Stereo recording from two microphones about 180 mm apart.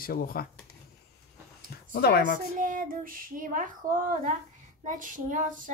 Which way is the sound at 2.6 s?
50° right (ahead or behind).